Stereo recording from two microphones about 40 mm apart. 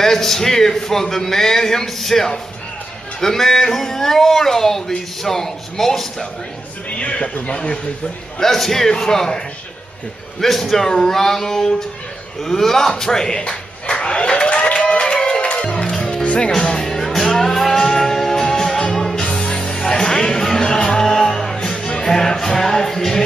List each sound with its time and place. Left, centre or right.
0.0 s speech: centre
6.9 s speech: left
8.4 s speech: centre
10.4 s speech: centre
13.4 s a sound: left
16.0 s music: left